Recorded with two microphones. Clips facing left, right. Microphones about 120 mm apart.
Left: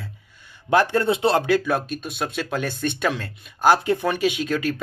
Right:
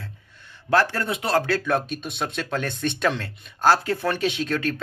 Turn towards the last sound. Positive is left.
turn(degrees=5)  # may be behind; listen again after turning